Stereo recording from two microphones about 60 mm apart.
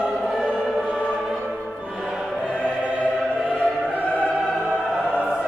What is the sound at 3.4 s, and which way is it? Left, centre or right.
Opera, centre.